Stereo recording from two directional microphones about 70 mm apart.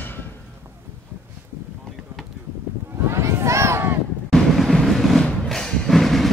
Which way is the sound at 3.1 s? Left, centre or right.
Right.